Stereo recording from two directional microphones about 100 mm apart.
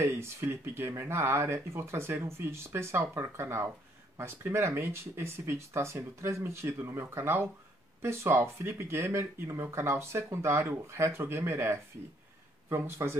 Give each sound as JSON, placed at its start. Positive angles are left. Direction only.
{"t": 0.0, "sound": "speech", "side_deg": -25}